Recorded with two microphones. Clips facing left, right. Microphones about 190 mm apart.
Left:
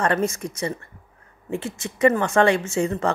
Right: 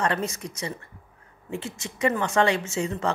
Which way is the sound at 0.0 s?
50° left (ahead or behind).